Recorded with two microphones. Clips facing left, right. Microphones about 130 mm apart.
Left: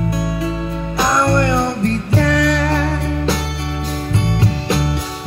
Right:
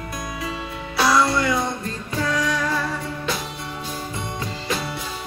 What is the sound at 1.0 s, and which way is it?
Music, 50° left (ahead or behind).